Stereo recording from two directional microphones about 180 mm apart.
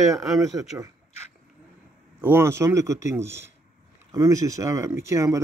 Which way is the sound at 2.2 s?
15° right (ahead or behind).